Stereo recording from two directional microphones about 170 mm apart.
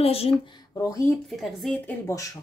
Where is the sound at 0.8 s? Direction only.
15° left (ahead or behind).